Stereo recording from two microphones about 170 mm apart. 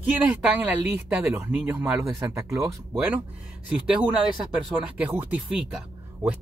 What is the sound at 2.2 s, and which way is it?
Speech, 20° right (ahead or behind).